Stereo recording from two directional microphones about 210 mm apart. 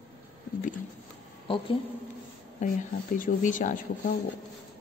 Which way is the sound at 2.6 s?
40° left (ahead or behind).